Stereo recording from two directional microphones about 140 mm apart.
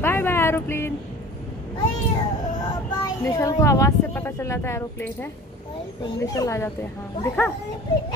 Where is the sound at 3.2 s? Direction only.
20° left (ahead or behind).